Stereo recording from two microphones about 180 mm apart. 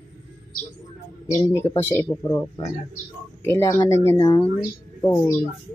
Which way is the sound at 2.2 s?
20° left (ahead or behind).